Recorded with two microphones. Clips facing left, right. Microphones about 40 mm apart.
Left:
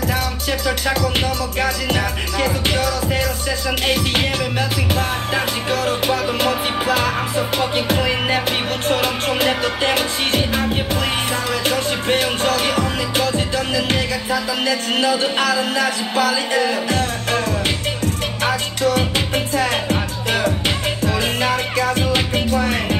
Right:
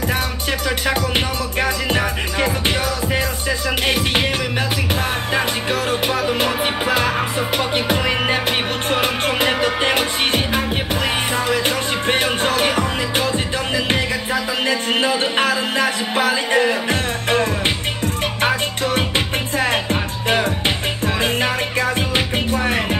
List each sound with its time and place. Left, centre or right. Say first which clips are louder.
0.0 s music: even; right
4.2 s music: even; centre